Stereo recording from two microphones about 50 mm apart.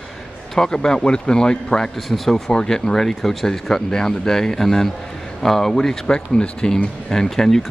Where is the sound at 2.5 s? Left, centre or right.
Centre.